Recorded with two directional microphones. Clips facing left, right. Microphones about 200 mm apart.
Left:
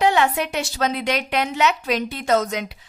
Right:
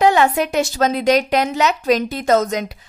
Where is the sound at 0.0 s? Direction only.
45° right (ahead or behind).